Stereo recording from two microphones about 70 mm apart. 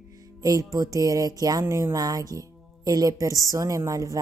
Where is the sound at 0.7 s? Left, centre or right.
Right.